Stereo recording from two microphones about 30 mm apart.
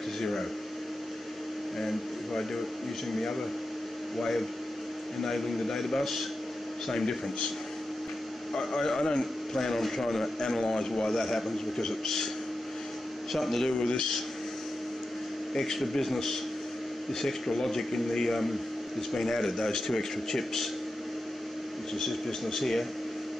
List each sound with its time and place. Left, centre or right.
0.2 s speech: centre
1.8 s speech: centre
8.5 s a man's voice: centre
13.3 s speech: centre
13.8 s a man's voice: left
15.6 s speech: centre
21.9 s speech: centre